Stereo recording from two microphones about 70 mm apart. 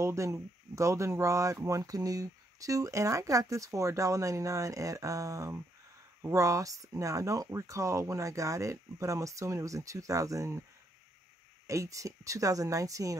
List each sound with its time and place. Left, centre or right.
0.0 s speech: right
11.6 s speech: right